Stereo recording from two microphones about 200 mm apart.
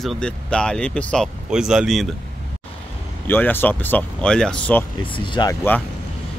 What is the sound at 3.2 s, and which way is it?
Speech, 10° left (ahead or behind).